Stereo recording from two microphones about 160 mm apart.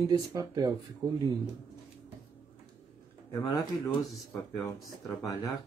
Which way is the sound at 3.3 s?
25° left (ahead or behind).